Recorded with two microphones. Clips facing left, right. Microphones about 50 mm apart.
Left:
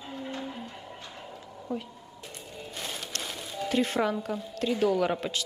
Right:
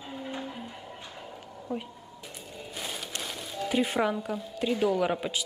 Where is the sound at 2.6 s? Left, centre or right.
Centre.